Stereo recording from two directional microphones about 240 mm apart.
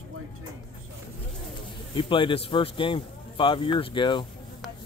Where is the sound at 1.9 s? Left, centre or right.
Left.